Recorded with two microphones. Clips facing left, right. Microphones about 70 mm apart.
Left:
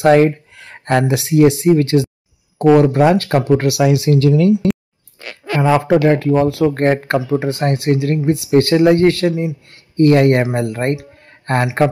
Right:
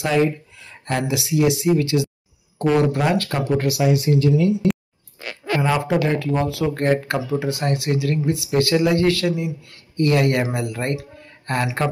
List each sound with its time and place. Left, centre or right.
0.0 s speech: left
5.9 s speech: left